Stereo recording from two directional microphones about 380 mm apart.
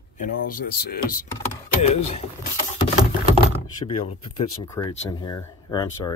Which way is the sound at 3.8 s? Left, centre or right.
Centre.